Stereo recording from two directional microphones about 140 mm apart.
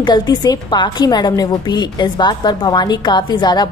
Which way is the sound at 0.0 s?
30° left (ahead or behind).